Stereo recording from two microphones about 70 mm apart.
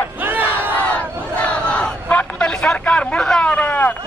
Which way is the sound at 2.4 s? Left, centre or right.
Centre.